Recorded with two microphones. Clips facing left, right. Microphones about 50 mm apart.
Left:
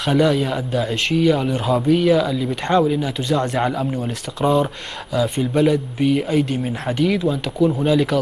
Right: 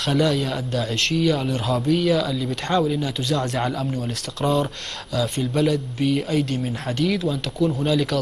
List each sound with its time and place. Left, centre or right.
0.0 s speech: centre